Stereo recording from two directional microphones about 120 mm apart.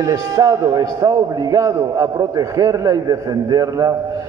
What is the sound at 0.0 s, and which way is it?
A man's voice, 30° right (ahead or behind).